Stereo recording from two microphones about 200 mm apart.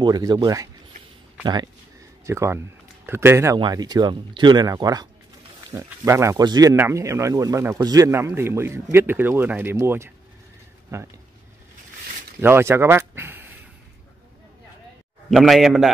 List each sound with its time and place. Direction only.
0.0 s speech: 20° right (ahead or behind)
12.4 s speech: 10° right (ahead or behind)
15.2 s a man's voice: centre (ahead or behind)